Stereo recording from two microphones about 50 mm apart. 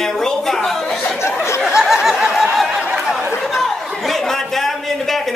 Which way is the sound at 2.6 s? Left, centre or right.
Right.